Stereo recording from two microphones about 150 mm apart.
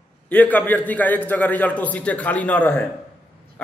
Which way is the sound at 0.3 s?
10° left (ahead or behind).